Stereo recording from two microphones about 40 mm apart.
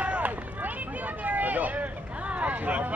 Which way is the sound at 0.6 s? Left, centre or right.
Right.